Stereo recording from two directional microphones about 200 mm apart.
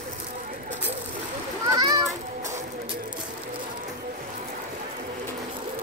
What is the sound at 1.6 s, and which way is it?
Children playing, 20° right (ahead or behind).